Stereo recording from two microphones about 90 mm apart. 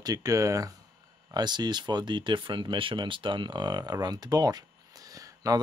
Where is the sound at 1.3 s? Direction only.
50° right (ahead or behind).